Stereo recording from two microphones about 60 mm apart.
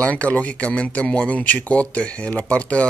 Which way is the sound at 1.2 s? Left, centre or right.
Left.